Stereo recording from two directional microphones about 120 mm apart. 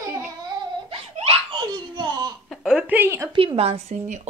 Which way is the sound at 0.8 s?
55° right (ahead or behind).